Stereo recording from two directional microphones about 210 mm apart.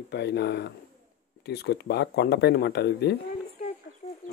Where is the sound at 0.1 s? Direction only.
50° left (ahead or behind).